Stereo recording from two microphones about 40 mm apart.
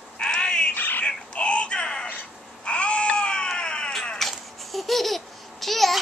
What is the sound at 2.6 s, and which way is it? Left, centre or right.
Baby cry, left.